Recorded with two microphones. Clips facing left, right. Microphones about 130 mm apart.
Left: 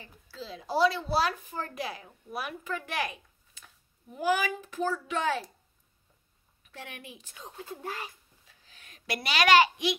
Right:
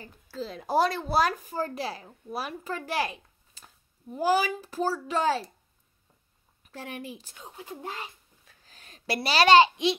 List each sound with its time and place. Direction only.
0.0 s a woman's voice: 45° right (ahead or behind)
6.7 s a woman's voice: 35° right (ahead or behind)
7.4 s speech: 5° right (ahead or behind)
7.8 s a child's voice: 20° right (ahead or behind)
8.6 s a child's voice: 35° right (ahead or behind)